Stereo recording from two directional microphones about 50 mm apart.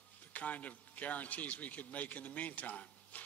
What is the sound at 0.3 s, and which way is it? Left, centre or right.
A man's voice, left.